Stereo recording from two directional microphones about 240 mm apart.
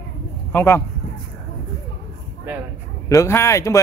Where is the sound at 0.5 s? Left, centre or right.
Centre.